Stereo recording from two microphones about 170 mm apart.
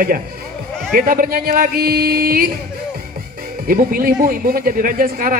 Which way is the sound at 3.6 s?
60° right (ahead or behind).